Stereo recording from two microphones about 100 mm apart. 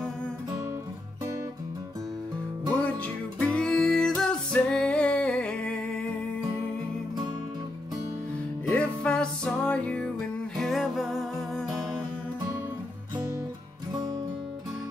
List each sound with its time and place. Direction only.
3.3 s music: 10° left (ahead or behind)
8.6 s music: 15° left (ahead or behind); by 11.6 s centre (ahead or behind)